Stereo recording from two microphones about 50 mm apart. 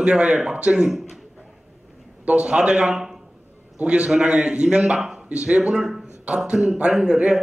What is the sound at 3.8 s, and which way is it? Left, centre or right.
A man's voice, right.